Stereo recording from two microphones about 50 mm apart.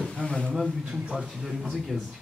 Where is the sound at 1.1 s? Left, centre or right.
Centre.